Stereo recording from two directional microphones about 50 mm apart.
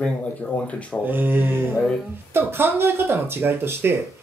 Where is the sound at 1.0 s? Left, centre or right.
Right.